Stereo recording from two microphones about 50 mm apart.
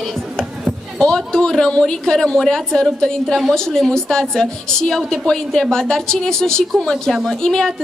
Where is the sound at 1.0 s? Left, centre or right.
Centre.